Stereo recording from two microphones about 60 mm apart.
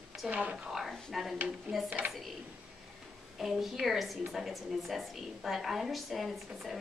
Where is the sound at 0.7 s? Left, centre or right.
Centre.